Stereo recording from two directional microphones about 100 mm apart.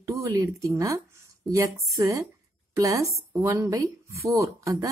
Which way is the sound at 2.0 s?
30° right (ahead or behind).